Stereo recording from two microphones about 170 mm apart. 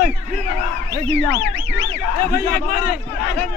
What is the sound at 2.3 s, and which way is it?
Speech, 65° left (ahead or behind).